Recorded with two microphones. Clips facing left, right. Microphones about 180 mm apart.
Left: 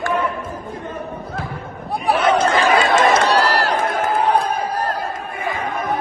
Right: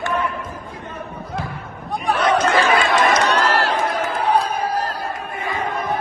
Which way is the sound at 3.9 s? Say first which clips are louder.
Left 2 dB; 55° left (ahead or behind).